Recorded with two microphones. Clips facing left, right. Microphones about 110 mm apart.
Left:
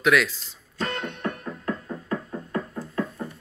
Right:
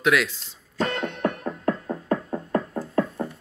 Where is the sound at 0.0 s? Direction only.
15° right (ahead or behind).